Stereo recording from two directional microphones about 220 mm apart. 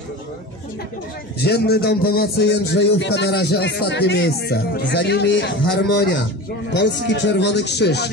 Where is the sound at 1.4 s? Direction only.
45° left (ahead or behind).